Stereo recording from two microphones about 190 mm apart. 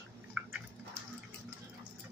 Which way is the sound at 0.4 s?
5° right (ahead or behind).